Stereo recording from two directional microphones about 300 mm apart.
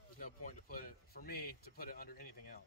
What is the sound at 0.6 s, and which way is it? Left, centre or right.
Speech, left.